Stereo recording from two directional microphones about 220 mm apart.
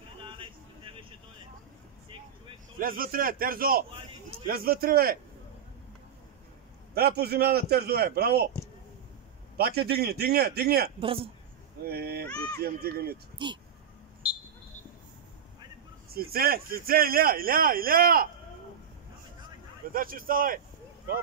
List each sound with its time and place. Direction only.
0.2 s a sound: 20° right (ahead or behind)
2.8 s a man's voice: 40° right (ahead or behind)
7.0 s a man's voice: 45° right (ahead or behind)
9.6 s a man's voice: 45° right (ahead or behind)
11.0 s speech: 25° right (ahead or behind)
11.9 s a man's voice: 45° right (ahead or behind)
13.4 s speech: 20° right (ahead or behind)
14.2 s a sound: 5° right (ahead or behind)
16.1 s speech: 45° right (ahead or behind)
19.9 s speech: 40° right (ahead or behind)